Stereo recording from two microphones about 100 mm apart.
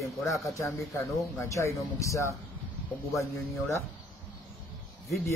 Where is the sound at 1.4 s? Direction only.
30° left (ahead or behind).